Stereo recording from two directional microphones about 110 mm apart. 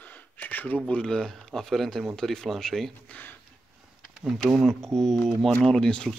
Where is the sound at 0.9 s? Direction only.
5° left (ahead or behind).